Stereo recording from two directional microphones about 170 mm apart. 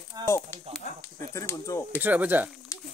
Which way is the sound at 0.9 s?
45° left (ahead or behind).